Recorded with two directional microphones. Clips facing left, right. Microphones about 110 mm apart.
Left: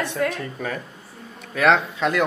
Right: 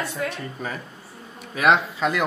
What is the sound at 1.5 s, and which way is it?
Speech, 5° right (ahead or behind).